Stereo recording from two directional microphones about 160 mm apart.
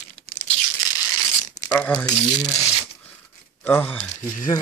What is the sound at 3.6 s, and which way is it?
Speech, 10° left (ahead or behind).